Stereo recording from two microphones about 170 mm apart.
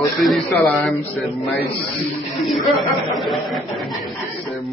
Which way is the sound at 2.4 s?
Centre (ahead or behind).